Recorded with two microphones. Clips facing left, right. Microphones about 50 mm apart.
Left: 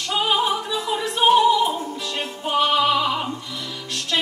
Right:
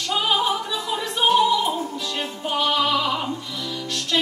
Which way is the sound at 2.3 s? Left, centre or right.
Centre.